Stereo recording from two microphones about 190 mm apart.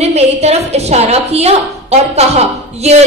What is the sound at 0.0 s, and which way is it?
A woman's voice, 35° right (ahead or behind).